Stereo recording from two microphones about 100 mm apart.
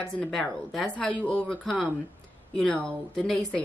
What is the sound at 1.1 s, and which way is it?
A woman's voice, 15° left (ahead or behind).